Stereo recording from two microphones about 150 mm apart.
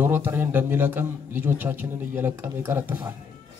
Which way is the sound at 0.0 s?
15° right (ahead or behind).